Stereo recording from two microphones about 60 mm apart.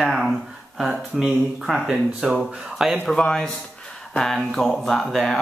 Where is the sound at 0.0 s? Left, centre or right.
Centre.